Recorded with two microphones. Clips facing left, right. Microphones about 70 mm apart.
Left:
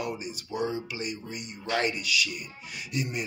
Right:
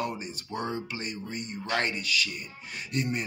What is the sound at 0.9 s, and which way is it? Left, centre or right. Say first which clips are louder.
Speech: even; right.